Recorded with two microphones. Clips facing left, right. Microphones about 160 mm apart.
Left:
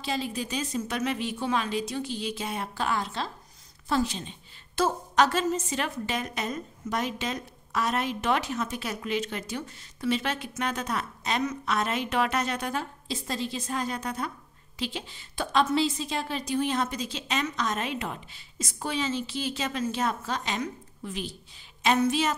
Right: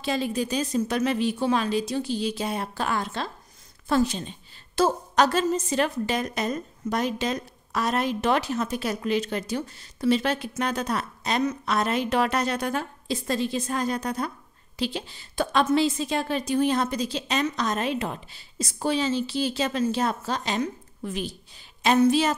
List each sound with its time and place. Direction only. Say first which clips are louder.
0.0 s a woman's voice: right 5 dB; 55° right (ahead or behind); by 15.4 s 35° right (ahead or behind)
15.5 s a woman's voice: right 2 dB; 50° right (ahead or behind); by 22.3 s 35° right (ahead or behind)